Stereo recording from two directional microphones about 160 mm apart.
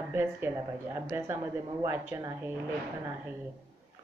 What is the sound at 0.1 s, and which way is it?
A woman's voice, 15° right (ahead or behind).